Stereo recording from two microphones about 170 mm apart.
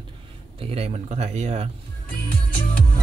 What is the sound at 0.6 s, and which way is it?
Speech, 35° right (ahead or behind).